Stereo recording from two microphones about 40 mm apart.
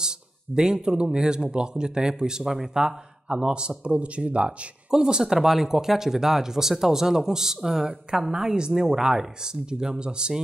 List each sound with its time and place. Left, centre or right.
0.6 s speech: centre
4.9 s speech: centre